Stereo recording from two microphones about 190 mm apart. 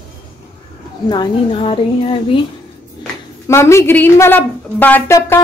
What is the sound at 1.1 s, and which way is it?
A woman's voice, 25° left (ahead or behind).